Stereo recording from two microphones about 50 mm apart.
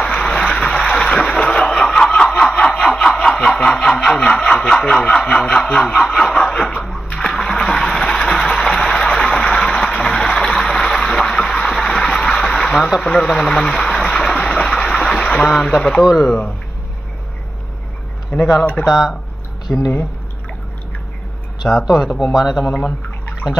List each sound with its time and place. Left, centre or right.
0.0 s a sound: centre
2.1 s snicker: centre
2.9 s a sound: centre
3.3 s speech: centre
6.8 s splash: centre
7.1 s a sound: centre
16.0 s a man's voice: centre
18.6 s speech: left
18.9 s a man's voice: centre
21.8 s a man's voice: centre